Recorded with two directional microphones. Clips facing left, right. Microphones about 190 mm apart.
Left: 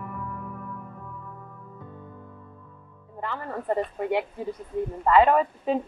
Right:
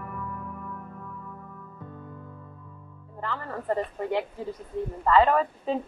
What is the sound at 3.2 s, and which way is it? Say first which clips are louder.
A woman's voice: left 1 dB; 15° left (ahead or behind).